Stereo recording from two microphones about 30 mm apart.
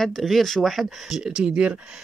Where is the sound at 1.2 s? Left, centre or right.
Right.